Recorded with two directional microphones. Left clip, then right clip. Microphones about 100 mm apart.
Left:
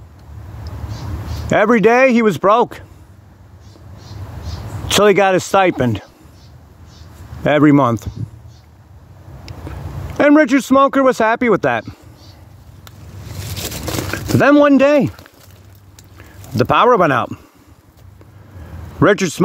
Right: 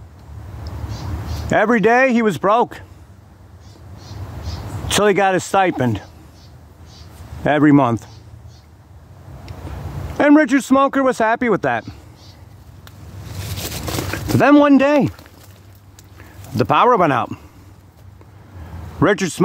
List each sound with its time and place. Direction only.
1.5 s speech: 15° left (ahead or behind)
4.8 s speech: 15° left (ahead or behind)
7.4 s speech: 10° left (ahead or behind)
10.1 s speech: 10° left (ahead or behind)
14.1 s a sound: 5° left (ahead or behind)
14.8 s speech: 10° left (ahead or behind)
16.5 s speech: 10° left (ahead or behind)
18.9 s speech: 10° left (ahead or behind)